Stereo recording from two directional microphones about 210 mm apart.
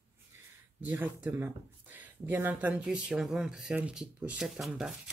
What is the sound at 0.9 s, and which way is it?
Speech, 10° right (ahead or behind).